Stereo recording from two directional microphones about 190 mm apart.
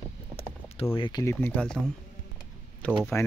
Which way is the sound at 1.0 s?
20° left (ahead or behind).